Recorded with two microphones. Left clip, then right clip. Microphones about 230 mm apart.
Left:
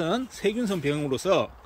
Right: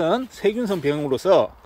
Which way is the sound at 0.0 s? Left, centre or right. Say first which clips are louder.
Right 6 dB; centre.